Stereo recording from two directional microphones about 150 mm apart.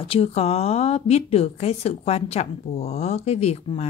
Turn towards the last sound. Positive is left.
turn(degrees=45)  # may be behind; listen again after turning